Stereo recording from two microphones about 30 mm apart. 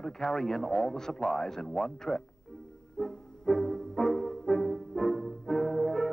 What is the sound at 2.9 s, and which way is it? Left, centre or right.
Music, centre.